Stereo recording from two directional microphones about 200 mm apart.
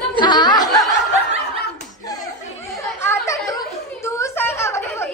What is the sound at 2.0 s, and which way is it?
Slap, 15° left (ahead or behind).